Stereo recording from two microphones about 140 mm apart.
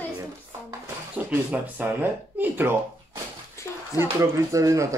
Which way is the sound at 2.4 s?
15° right (ahead or behind).